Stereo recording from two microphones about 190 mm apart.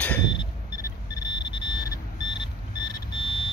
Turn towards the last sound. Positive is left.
turn(degrees=25)  # may be behind; listen again after turning